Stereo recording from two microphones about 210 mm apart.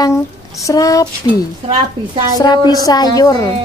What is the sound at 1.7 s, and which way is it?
Speech, 20° right (ahead or behind).